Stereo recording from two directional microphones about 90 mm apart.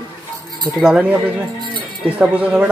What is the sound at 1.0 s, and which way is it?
Speech, 15° right (ahead or behind).